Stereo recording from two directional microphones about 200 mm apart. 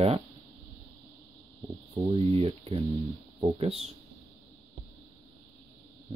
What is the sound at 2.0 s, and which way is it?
Speech, 30° right (ahead or behind).